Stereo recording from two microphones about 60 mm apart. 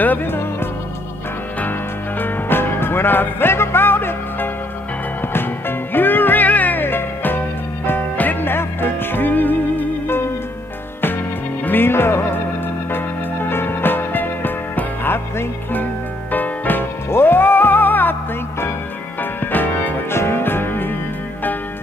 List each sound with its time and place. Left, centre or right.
0.0 s music: left
2.1 s music: left
11.6 s music: left
19.4 s music: left